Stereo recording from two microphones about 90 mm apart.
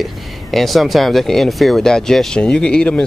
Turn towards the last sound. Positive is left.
turn(degrees=10)  # may be behind; listen again after turning